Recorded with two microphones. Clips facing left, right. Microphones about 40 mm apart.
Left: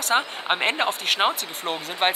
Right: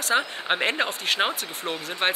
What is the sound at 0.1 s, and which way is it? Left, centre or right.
Speech, centre.